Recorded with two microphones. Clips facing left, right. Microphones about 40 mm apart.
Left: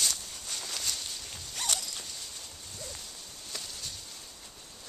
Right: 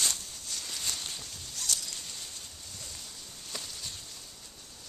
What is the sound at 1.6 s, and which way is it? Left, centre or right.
Zipper, left.